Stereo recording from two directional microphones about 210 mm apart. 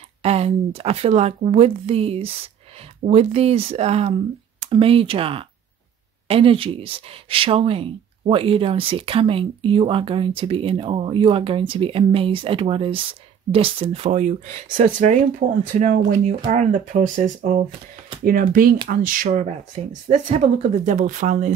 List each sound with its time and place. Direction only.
0.2 s speech: 30° right (ahead or behind)